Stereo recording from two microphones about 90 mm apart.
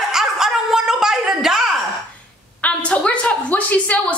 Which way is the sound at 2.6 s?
15° left (ahead or behind).